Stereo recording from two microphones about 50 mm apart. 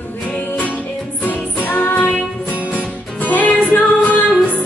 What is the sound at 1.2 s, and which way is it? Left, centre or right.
Music, left.